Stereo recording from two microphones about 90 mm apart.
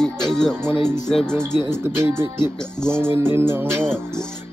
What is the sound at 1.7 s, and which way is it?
Music, 25° right (ahead or behind).